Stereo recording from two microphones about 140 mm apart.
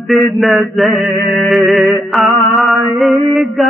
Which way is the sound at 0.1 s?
Centre (ahead or behind).